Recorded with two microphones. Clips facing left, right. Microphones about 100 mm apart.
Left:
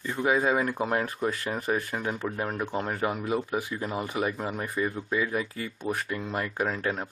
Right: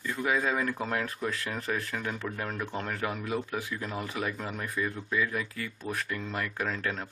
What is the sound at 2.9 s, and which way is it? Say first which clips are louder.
Speech: left 4 dB; 30° left (ahead or behind).